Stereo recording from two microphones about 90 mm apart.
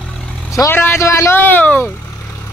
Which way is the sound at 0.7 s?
30° left (ahead or behind).